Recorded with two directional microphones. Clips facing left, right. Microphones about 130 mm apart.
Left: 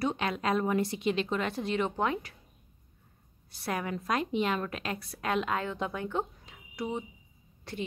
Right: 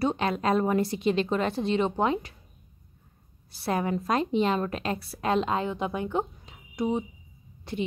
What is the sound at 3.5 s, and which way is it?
A woman's voice, 30° right (ahead or behind).